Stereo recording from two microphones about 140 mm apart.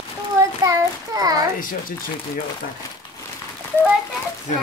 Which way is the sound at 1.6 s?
80° left.